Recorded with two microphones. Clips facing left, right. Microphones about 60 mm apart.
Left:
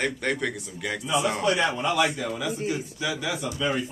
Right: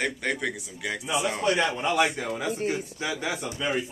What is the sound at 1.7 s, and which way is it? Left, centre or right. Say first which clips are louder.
A man's voice: even; right.